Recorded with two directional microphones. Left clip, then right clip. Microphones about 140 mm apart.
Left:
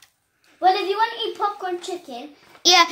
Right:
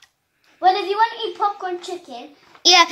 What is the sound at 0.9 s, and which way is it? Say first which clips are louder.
Speech: right 3 dB; 55° left (ahead or behind).